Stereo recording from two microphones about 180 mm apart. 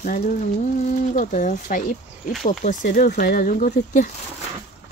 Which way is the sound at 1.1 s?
45° left (ahead or behind).